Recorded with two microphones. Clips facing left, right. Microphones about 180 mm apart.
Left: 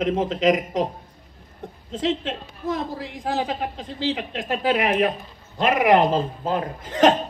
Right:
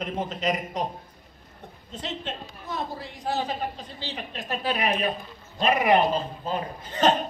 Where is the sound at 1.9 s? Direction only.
90° left.